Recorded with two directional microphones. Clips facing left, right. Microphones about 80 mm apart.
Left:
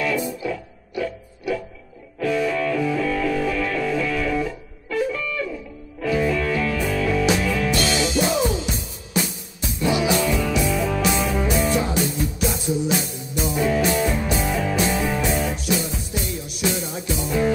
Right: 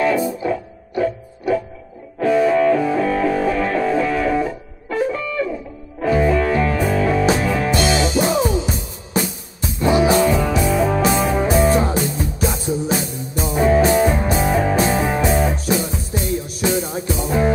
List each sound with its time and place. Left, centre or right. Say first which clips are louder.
0.0 s music: right 6 dB; right
9.1 s music: right 3 dB; right